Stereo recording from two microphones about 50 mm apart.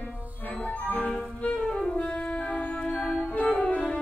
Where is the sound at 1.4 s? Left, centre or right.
Left.